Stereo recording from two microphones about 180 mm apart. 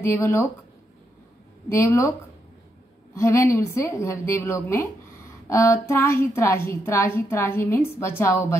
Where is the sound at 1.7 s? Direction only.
15° left (ahead or behind).